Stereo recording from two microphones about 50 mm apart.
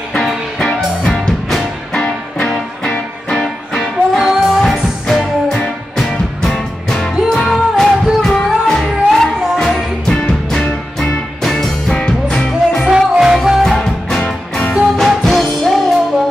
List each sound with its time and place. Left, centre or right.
0.6 s music: centre
3.8 s music: centre
4.6 s music: centre
10.2 s music: left
11.5 s music: centre
12.0 s music: left
12.8 s music: centre
13.4 s music: centre
14.2 s music: left
15.0 s music: centre